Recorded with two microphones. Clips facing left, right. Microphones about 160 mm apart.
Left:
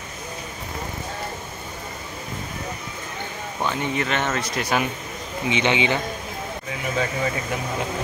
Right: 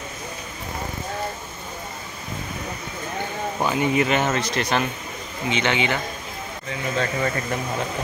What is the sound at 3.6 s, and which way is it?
Speech, 10° right (ahead or behind).